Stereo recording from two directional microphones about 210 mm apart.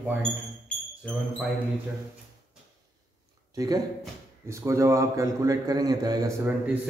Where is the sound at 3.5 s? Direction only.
15° right (ahead or behind).